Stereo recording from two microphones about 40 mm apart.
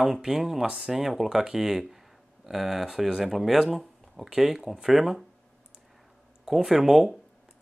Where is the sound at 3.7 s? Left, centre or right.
Centre.